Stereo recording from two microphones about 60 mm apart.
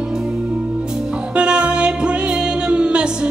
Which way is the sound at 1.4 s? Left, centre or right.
Centre.